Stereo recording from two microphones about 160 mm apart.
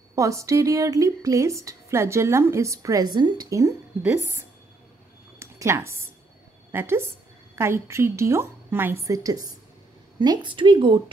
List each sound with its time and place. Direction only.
0.1 s a woman's voice: 20° right (ahead or behind)
5.4 s a woman's voice: 15° right (ahead or behind)